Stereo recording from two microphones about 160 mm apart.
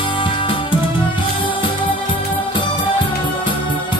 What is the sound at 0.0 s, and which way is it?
Music, 30° left (ahead or behind).